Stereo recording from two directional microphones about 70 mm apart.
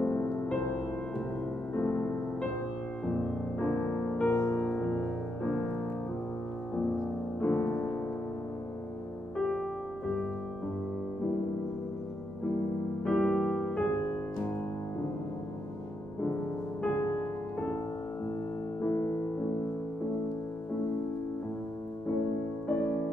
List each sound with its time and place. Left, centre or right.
0.0 s music: left
1.8 s music: left
3.5 s music: left
7.3 s music: left
13.0 s electric piano: centre
13.6 s music: centre
16.9 s music: left
18.8 s music: left